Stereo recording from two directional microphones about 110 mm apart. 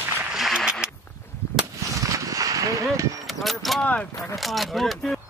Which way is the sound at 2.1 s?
30° right (ahead or behind).